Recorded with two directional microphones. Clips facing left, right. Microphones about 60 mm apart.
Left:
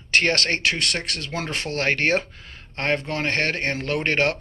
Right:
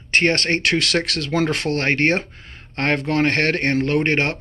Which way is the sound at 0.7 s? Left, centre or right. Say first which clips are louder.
Right 7 dB; right.